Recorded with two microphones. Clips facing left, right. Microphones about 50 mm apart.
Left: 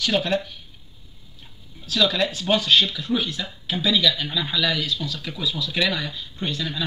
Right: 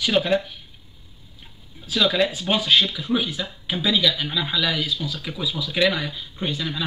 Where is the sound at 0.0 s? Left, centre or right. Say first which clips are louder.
Right 2 dB; centre.